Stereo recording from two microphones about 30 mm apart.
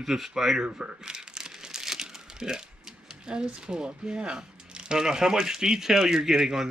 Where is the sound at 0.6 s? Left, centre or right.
Right.